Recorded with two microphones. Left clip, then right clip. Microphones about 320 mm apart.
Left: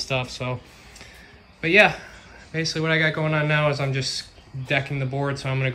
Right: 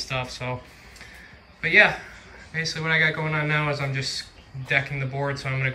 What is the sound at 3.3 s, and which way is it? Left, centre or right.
Speech, left.